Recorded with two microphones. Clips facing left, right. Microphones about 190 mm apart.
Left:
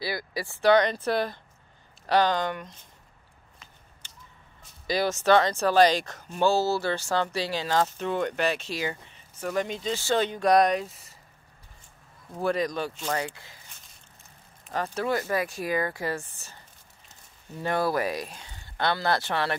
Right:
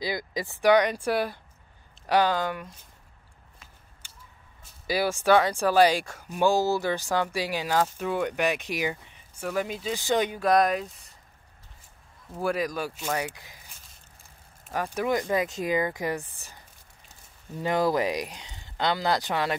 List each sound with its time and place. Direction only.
0.0 s speech: 20° right (ahead or behind)
4.0 s a sound: 10° right (ahead or behind)
4.8 s speech: 10° right (ahead or behind)
9.9 s speech: 15° right (ahead or behind)
10.4 s speech: centre (ahead or behind)
12.4 s speech: 5° right (ahead or behind)
14.7 s speech: 15° right (ahead or behind)
17.6 s speech: 15° right (ahead or behind)